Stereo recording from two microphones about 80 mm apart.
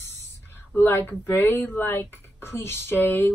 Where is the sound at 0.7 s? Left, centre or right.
Left.